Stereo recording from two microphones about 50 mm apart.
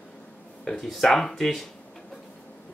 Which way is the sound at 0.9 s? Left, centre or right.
Centre.